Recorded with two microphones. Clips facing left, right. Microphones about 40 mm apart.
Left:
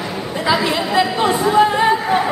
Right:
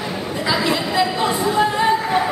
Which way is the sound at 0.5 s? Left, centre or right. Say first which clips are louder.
Left 3 dB; centre.